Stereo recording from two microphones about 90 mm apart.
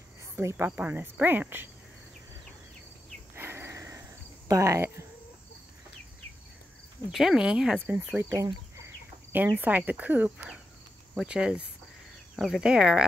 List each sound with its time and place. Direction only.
0.4 s cricket: 30° right (ahead or behind)
0.7 s cricket: 20° right (ahead or behind)
3.3 s a sound: 25° right (ahead or behind)
4.5 s cricket: 35° right (ahead or behind)
7.1 s cricket: centre (ahead or behind)
7.8 s cricket: 25° right (ahead or behind)
9.3 s cricket: 20° right (ahead or behind)
11.1 s speech: 10° right (ahead or behind)